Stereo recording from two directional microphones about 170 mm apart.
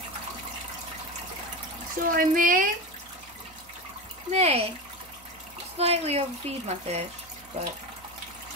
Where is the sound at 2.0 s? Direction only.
55° right (ahead or behind).